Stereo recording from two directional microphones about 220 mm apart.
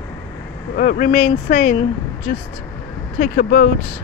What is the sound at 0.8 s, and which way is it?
Speech, 40° left (ahead or behind).